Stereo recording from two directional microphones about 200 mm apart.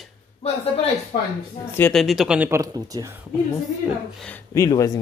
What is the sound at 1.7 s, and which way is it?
Speech, 5° left (ahead or behind).